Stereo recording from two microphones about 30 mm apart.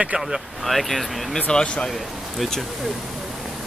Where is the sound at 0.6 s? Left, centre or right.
Centre.